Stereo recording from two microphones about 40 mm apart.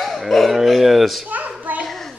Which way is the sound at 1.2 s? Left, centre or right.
Right.